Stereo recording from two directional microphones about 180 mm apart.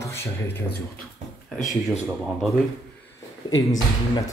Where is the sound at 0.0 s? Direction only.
15° left (ahead or behind).